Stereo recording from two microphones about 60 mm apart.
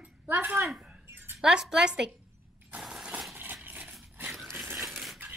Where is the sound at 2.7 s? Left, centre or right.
Centre.